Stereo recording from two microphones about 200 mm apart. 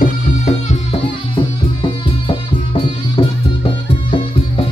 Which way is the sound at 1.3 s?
25° left (ahead or behind).